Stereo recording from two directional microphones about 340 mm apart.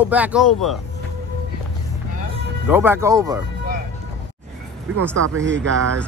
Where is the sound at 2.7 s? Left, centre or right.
Centre.